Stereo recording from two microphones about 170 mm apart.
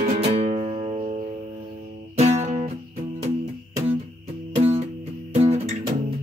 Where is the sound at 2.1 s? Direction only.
40° right (ahead or behind).